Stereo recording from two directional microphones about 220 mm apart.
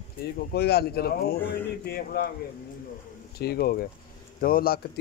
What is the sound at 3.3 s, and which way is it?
Speech, 45° left (ahead or behind).